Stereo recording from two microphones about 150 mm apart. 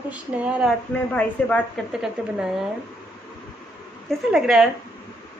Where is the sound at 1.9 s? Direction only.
5° right (ahead or behind).